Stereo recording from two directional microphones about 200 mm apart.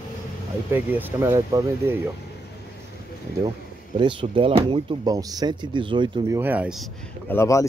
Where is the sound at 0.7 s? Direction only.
10° right (ahead or behind).